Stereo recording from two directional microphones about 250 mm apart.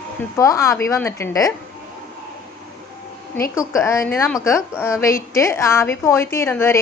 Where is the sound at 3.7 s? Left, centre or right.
Centre.